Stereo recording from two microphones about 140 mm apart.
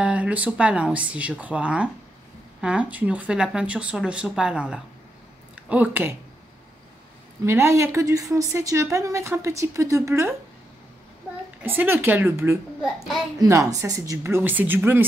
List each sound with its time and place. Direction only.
0.0 s speech: 10° right (ahead or behind)
7.4 s a woman's voice: 20° right (ahead or behind)
11.6 s a woman's voice: 15° right (ahead or behind)